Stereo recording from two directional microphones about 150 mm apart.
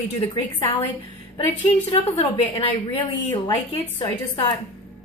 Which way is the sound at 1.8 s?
40° left (ahead or behind).